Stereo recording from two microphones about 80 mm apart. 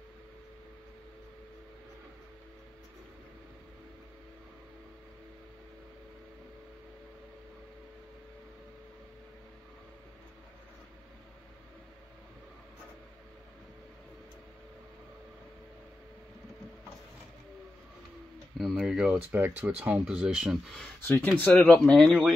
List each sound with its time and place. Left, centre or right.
18.6 s speech: centre
19.3 s speech: right
21.0 s speech: left
21.7 s speech: centre